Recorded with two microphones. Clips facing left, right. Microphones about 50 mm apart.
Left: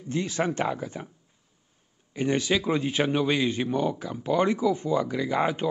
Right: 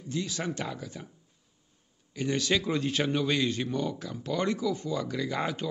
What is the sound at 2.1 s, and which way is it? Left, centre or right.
A man's voice, left.